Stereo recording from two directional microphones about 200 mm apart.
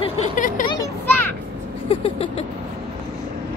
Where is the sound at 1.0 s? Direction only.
10° left (ahead or behind).